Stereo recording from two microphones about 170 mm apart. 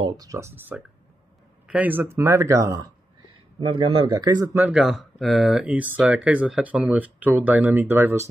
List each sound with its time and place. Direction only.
0.0 s speech: 20° right (ahead or behind)
3.5 s a man's voice: 30° right (ahead or behind)
4.6 s speech: 5° right (ahead or behind)